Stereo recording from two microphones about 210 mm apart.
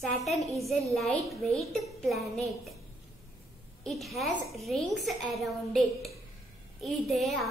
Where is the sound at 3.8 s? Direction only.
Centre (ahead or behind).